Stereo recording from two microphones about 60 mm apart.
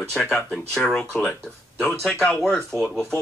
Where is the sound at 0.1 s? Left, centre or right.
Centre.